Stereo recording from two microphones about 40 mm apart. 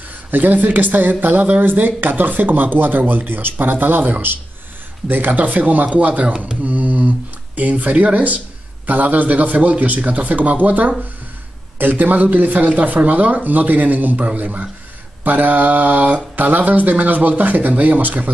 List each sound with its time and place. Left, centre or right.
0.3 s a man's voice: right
6.6 s mantra: right
7.8 s a man's voice: right